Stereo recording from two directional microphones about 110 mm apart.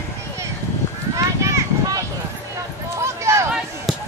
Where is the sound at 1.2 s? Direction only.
30° right (ahead or behind).